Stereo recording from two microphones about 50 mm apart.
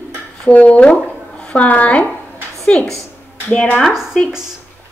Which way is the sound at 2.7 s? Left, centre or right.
Left.